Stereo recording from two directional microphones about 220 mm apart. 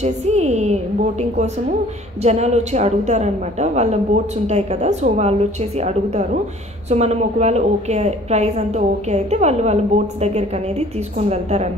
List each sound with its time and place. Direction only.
0.0 s a woman's voice: 30° right (ahead or behind)
2.2 s a woman's voice: 30° right (ahead or behind)
11.1 s a woman's voice: 30° right (ahead or behind)